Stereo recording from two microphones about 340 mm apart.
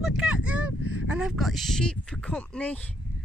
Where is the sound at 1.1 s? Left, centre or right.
Centre.